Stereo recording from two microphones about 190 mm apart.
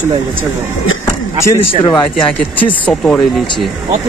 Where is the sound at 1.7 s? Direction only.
25° left (ahead or behind).